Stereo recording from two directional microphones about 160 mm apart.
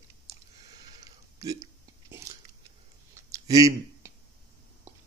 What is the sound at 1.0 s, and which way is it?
Chewing, 20° right (ahead or behind).